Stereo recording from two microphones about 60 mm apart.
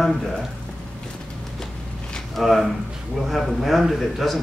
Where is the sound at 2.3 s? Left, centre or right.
Centre.